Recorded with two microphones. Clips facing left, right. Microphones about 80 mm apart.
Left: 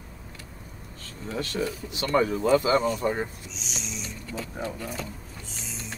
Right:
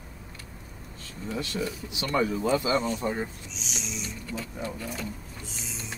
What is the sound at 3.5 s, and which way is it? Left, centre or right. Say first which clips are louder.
Speech: even; centre.